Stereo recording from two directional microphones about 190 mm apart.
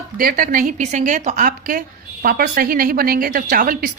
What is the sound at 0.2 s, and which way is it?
A woman's voice, 50° right (ahead or behind).